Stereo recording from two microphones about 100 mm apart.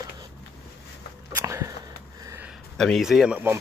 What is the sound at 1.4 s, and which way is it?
Sniff, 30° right (ahead or behind).